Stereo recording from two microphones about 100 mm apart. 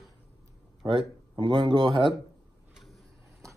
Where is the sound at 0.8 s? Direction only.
55° right (ahead or behind).